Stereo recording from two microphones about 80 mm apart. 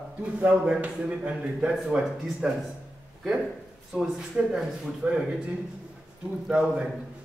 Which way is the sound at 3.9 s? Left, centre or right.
Centre.